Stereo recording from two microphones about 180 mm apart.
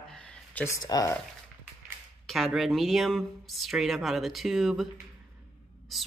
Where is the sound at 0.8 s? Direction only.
20° left (ahead or behind).